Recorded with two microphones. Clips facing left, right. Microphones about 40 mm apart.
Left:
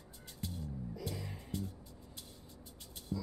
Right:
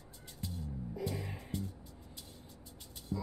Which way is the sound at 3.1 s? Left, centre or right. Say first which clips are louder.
Right 1 dB; centre.